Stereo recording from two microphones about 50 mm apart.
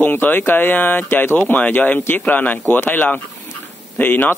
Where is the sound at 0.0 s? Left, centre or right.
Left.